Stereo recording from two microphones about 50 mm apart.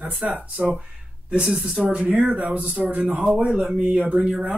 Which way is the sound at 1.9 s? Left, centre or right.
Right.